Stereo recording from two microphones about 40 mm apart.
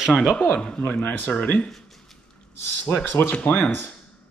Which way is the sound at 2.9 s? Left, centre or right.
Left.